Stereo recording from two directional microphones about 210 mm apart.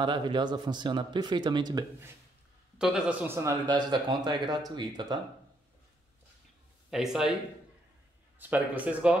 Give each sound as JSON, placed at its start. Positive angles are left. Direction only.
{"t": 0.0, "sound": "speech", "side_deg": -20}
{"t": 2.8, "sound": "speech", "side_deg": -5}
{"t": 6.9, "sound": "speech", "side_deg": 0}
{"t": 8.4, "sound": "speech", "side_deg": -10}